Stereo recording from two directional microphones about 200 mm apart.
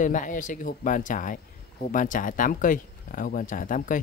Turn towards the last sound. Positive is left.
turn(degrees=40)  # may be behind; listen again after turning